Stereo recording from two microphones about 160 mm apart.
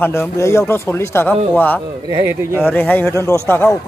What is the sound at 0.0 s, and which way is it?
A man's voice, 15° left (ahead or behind).